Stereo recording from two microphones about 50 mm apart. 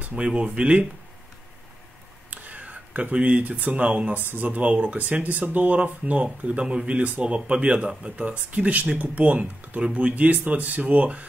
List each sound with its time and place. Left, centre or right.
0.0 s speech: right
2.3 s speech: right